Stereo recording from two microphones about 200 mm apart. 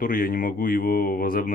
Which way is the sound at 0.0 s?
45° left (ahead or behind).